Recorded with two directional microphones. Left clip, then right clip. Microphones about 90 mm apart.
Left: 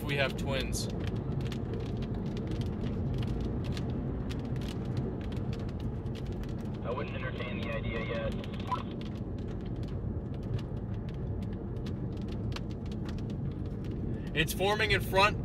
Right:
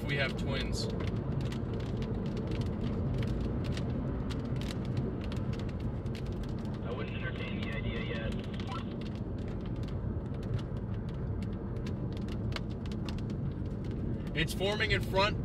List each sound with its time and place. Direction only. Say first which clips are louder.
0.1 s speech: left 3 dB; 30° left (ahead or behind)
14.3 s speech: left 4 dB; 35° left (ahead or behind)